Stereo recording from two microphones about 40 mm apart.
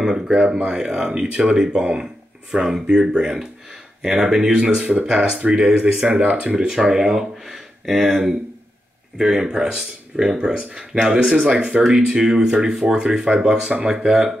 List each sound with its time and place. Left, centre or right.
0.0 s speech: centre
6.7 s speech: centre
11.5 s speech: right
12.4 s speech: centre